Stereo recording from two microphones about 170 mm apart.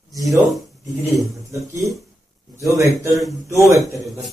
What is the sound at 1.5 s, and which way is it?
Speech, 20° right (ahead or behind).